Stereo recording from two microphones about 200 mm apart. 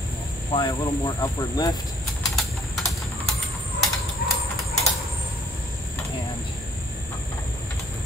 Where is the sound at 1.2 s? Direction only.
20° left (ahead or behind).